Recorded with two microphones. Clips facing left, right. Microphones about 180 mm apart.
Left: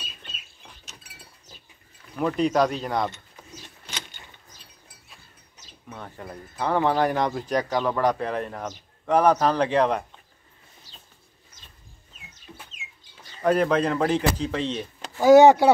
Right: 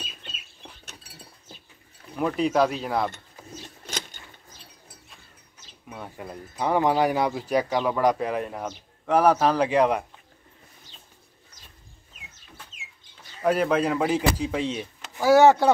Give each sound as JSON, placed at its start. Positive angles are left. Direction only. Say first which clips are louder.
{"t": 2.1, "sound": "speech", "louder": "even", "side_deg": -5}
{"t": 3.1, "sound": "keys jangling", "louder": "right 2 dB", "side_deg": -45}
{"t": 5.9, "sound": "speech", "louder": "right 1 dB", "side_deg": -10}
{"t": 10.9, "sound": "bird", "louder": "left 1 dB", "side_deg": 35}
{"t": 13.4, "sound": "speech", "louder": "left 1 dB", "side_deg": -5}
{"t": 15.1, "sound": "speech", "louder": "left 3 dB", "side_deg": 20}